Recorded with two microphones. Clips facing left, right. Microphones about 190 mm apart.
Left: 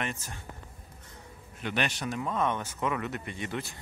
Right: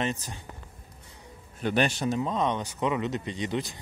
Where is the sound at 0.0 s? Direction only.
20° right (ahead or behind).